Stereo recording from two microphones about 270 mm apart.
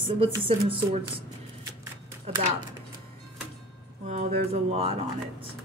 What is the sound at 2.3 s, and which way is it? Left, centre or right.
Speech, right.